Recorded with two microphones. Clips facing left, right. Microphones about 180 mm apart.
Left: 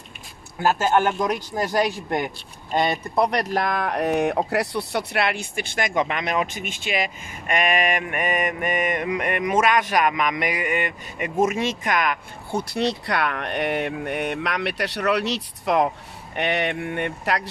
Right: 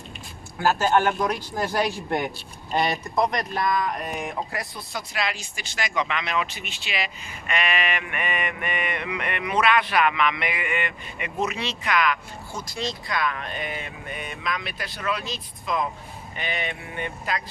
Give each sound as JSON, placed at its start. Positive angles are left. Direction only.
{"t": 0.6, "sound": "speech", "side_deg": 20}
{"t": 3.3, "sound": "speech", "side_deg": 70}